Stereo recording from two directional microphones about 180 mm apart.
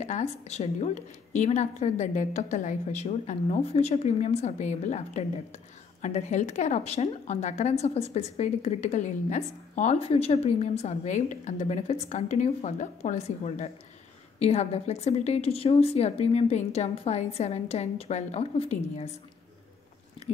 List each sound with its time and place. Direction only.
0.0 s a woman's voice: 40° left (ahead or behind)